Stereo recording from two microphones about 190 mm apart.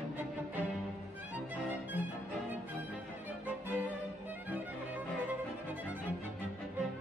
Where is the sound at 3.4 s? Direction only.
10° right (ahead or behind).